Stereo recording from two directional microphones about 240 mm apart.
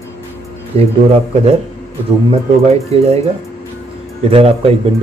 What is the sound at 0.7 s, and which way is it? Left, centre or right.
Speech, right.